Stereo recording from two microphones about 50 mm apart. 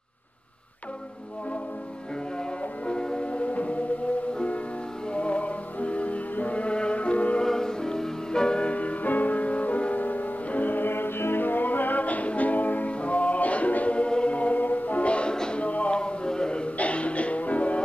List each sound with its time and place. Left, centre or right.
2.9 s music: centre
5.1 s music: left
7.4 s music: centre
15.6 s music: left